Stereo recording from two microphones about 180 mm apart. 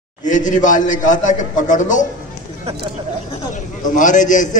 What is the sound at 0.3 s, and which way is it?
A man's voice, 45° left (ahead or behind).